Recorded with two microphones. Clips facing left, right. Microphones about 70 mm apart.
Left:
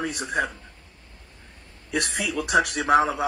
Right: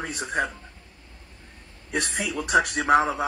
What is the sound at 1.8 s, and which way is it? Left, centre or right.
Speech, right.